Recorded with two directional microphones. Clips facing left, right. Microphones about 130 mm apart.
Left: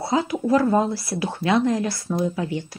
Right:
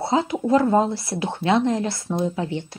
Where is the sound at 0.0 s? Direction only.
25° right (ahead or behind).